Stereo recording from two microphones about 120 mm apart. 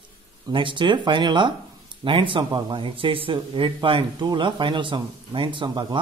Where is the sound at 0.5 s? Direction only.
40° right (ahead or behind).